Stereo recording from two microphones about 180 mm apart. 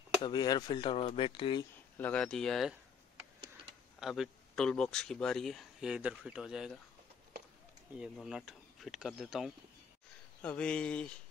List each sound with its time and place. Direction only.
0.2 s speech: 25° left (ahead or behind)
2.0 s speech: 5° left (ahead or behind)
4.0 s speech: centre (ahead or behind)
8.0 s speech: 5° right (ahead or behind)